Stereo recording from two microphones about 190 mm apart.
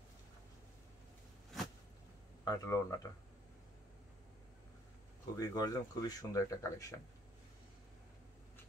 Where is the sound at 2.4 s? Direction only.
20° left (ahead or behind).